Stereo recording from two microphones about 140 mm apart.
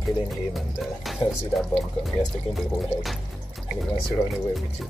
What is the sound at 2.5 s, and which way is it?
Speech, centre (ahead or behind).